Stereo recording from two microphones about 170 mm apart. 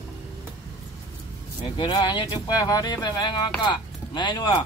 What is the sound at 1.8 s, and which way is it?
Speech, 30° left (ahead or behind).